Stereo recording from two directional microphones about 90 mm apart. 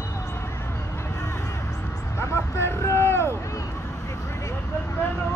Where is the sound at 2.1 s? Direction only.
30° left (ahead or behind).